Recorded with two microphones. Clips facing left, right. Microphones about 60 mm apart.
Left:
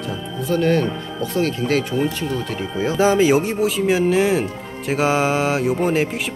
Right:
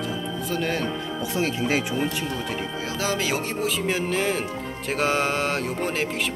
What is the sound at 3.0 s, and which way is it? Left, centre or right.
Speech, left.